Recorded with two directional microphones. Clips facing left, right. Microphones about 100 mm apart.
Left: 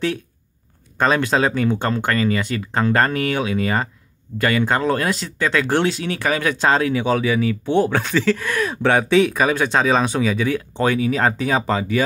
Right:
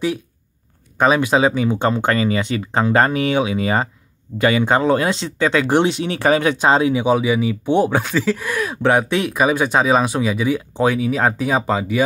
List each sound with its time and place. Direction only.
0.9 s speech: 10° right (ahead or behind)
8.0 s speech: 5° right (ahead or behind)